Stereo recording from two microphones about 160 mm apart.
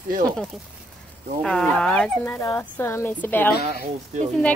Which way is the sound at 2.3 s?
15° left (ahead or behind).